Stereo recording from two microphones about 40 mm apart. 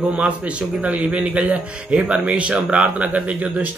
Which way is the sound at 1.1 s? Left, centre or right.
Right.